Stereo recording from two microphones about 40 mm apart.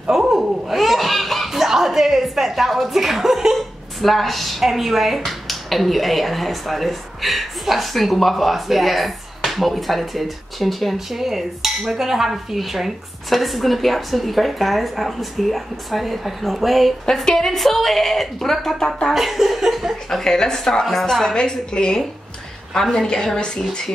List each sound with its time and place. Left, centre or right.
0.3 s a child's voice: centre
4.0 s speech: centre
17.0 s speech: centre
19.1 s speech: centre
20.1 s a woman's voice: centre